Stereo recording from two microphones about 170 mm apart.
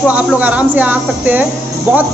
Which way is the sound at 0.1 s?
10° right (ahead or behind).